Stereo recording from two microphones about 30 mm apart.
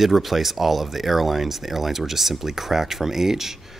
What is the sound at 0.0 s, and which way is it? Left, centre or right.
Speech, centre.